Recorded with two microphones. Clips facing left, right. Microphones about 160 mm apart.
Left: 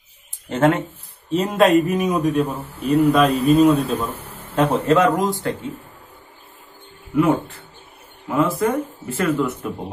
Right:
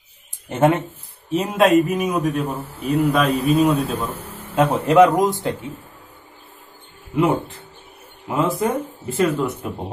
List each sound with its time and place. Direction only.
0.5 s speech: 20° right (ahead or behind)
1.3 s a man's voice: centre (ahead or behind)
4.8 s speech: 20° right (ahead or behind)
7.2 s speech: 15° right (ahead or behind)